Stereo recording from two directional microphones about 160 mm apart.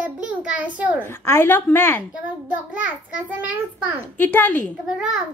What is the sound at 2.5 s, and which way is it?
A child's voice, 10° right (ahead or behind).